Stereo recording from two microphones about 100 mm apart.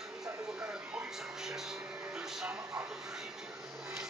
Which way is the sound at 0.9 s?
5° right (ahead or behind).